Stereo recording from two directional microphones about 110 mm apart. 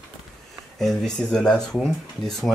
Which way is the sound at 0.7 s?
5° left (ahead or behind).